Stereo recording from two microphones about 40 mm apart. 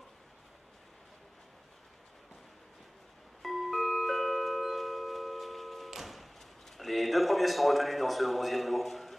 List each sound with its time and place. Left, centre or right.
3.4 s music: centre
6.8 s a man's voice: centre